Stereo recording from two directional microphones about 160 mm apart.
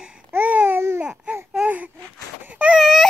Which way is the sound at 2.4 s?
10° right (ahead or behind).